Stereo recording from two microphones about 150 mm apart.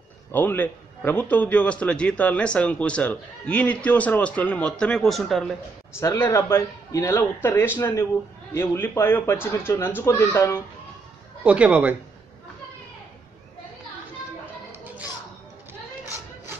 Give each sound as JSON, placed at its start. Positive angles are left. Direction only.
{"t": 0.3, "sound": "a man's voice", "side_deg": 10}
{"t": 5.9, "sound": "a man's voice", "side_deg": 15}
{"t": 11.4, "sound": "a man's voice", "side_deg": -10}